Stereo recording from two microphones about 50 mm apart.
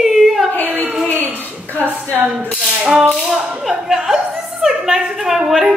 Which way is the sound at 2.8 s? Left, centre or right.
Centre.